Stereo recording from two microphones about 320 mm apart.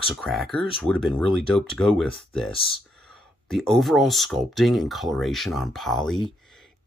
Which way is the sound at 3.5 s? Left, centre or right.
Centre.